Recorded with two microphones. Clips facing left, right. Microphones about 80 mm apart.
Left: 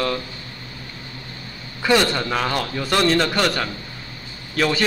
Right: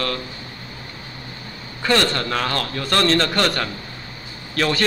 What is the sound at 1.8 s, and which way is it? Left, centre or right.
A man's voice, centre.